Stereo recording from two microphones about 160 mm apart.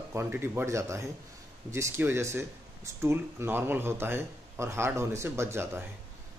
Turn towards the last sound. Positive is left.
turn(degrees=-15)  # may be behind; listen again after turning